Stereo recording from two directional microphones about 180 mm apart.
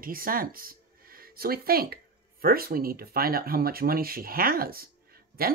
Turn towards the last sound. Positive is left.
turn(degrees=-55)  # may be behind; listen again after turning